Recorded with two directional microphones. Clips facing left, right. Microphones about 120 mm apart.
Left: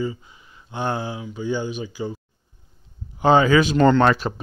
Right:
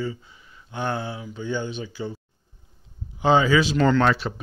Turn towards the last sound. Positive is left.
turn(degrees=50)  # may be behind; listen again after turning